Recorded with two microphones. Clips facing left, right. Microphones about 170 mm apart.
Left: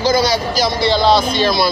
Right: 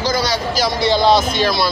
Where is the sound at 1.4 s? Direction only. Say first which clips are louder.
Left 2 dB; centre (ahead or behind).